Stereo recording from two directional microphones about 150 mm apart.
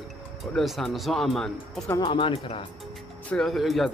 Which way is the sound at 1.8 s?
25° left (ahead or behind).